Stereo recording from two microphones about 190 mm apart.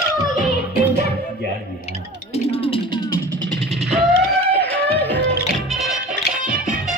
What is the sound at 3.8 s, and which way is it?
Music, centre (ahead or behind).